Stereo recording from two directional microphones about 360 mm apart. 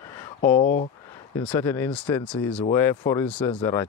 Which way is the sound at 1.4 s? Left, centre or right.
Centre.